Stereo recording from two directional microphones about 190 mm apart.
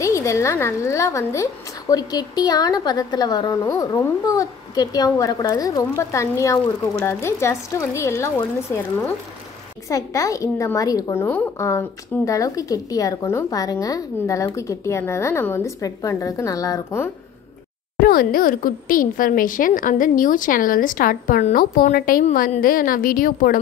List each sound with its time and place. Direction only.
0.0 s a woman's voice: 15° left (ahead or behind)
9.8 s a woman's voice: 15° left (ahead or behind)
18.0 s speech: 50° left (ahead or behind)